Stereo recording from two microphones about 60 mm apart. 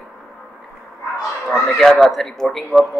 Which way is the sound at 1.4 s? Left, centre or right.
Centre.